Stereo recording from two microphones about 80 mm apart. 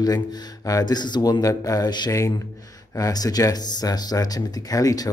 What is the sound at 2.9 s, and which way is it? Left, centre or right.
A man's voice, left.